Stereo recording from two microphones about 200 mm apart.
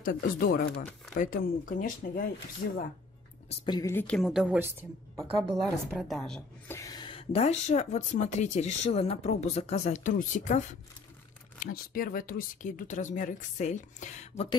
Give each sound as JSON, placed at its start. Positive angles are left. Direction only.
{"t": 0.0, "sound": "speech", "side_deg": 45}
{"t": 3.4, "sound": "a woman's voice", "side_deg": 20}
{"t": 4.2, "sound": "a woman's voice", "side_deg": -5}
{"t": 5.6, "sound": "a woman's voice", "side_deg": 0}
{"t": 6.8, "sound": "speech", "side_deg": 20}